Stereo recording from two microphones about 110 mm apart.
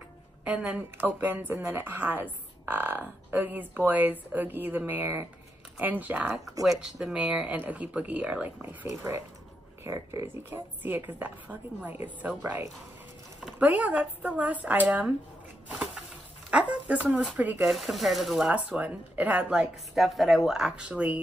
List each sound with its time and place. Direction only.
0.5 s speech: 10° right (ahead or behind)
6.6 s speech: centre (ahead or behind)
13.6 s speech: 15° right (ahead or behind)
15.7 s a sound: 10° right (ahead or behind)
16.4 s speech: 10° right (ahead or behind)
17.6 s speech: centre (ahead or behind)